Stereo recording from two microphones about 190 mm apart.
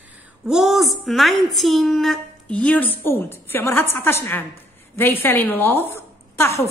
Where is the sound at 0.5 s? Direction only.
Centre (ahead or behind).